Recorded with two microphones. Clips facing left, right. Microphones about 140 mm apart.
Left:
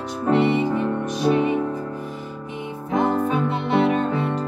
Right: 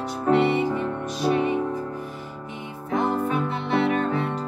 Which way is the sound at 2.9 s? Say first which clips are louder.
Left 3 dB; 20° left (ahead or behind).